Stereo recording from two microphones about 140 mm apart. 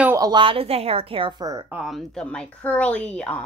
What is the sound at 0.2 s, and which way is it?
Speech, 35° right (ahead or behind).